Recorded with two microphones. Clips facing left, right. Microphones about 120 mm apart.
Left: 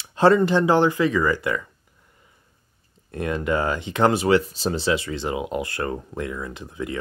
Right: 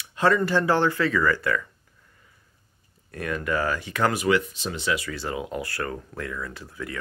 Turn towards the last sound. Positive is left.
turn(degrees=20)  # may be behind; listen again after turning